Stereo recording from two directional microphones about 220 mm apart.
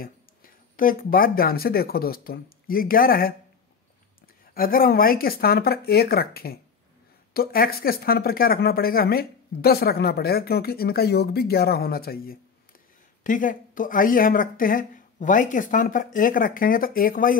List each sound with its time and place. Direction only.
0.0 s speech: 40° left (ahead or behind)
4.6 s speech: 40° left (ahead or behind)